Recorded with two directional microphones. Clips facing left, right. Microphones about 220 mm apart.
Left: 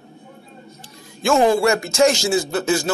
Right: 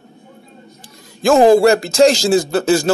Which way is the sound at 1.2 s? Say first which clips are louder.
Right 6 dB; 35° right (ahead or behind).